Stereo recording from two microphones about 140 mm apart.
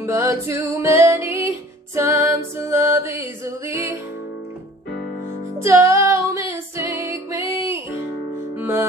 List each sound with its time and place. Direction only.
0.0 s music: 20° right (ahead or behind)
5.6 s music: 20° right (ahead or behind)